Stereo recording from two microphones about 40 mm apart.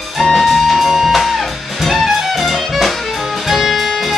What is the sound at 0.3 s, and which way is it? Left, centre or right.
Music, centre.